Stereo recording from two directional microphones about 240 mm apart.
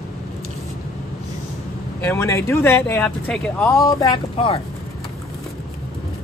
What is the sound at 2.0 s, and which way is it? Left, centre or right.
Speech, centre.